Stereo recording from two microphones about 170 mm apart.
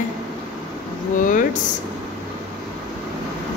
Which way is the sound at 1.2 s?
50° left (ahead or behind).